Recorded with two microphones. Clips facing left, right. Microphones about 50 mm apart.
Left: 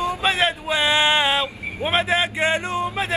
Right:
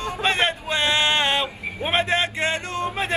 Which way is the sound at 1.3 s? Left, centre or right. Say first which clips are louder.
Left 1 dB; centre.